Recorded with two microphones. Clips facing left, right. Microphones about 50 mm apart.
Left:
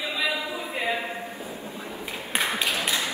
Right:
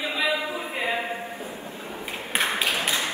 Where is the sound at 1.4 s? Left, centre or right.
Right.